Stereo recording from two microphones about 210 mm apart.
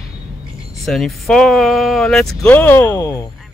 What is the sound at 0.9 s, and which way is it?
Speech, centre (ahead or behind).